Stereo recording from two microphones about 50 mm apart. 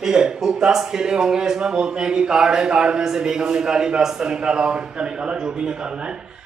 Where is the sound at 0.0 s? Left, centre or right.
Centre.